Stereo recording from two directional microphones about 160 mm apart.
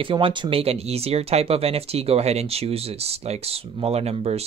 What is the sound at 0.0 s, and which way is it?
Speech, 35° right (ahead or behind).